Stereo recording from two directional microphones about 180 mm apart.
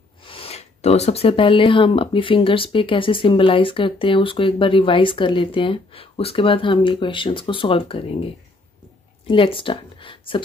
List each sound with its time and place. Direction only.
0.2 s speech: 30° left (ahead or behind)